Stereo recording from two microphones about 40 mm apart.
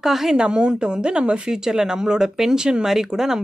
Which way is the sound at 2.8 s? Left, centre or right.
Centre.